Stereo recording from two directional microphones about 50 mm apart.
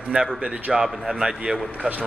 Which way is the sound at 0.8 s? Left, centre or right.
Centre.